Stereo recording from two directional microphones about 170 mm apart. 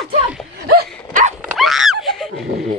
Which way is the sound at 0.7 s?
65° right (ahead or behind).